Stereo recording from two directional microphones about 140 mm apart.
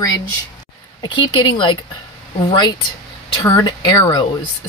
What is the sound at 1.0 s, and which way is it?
Speech, 35° left (ahead or behind).